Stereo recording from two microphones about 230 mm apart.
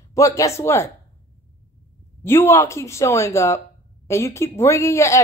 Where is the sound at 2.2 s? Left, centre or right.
Centre.